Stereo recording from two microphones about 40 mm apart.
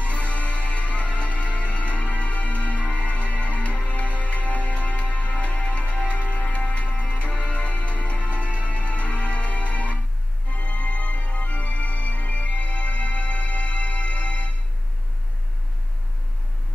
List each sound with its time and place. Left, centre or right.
0.0 s music: left